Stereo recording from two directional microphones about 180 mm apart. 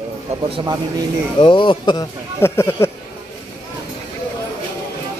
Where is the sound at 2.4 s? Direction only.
15° left (ahead or behind).